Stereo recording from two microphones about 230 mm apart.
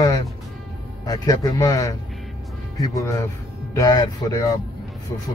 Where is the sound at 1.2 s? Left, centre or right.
Centre.